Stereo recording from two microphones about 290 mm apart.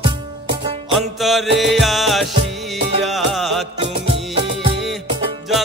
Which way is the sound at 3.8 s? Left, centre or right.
Centre.